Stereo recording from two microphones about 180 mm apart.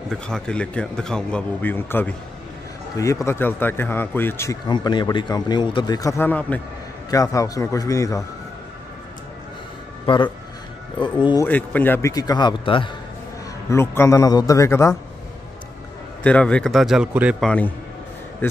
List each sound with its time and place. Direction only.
0.1 s a man's voice: 5° left (ahead or behind)
10.0 s speech: 25° left (ahead or behind)
11.4 s speech: 10° left (ahead or behind); by 12.9 s 25° left (ahead or behind)
13.7 s speech: 15° left (ahead or behind)
16.3 s a man's voice: 5° left (ahead or behind)
18.4 s speech: 10° left (ahead or behind)